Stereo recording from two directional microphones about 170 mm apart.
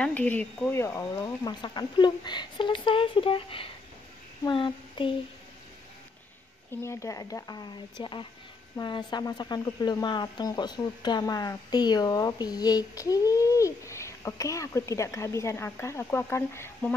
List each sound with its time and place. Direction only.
0.0 s speech: 10° left (ahead or behind); by 3.7 s 30° left (ahead or behind)
4.5 s child singing: 30° left (ahead or behind)
6.8 s speech: 15° left (ahead or behind)